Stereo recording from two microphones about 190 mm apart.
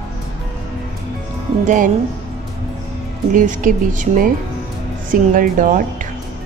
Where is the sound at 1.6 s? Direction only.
40° right (ahead or behind).